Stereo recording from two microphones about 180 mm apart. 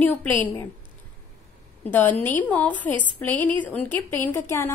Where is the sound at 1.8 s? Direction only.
10° left (ahead or behind).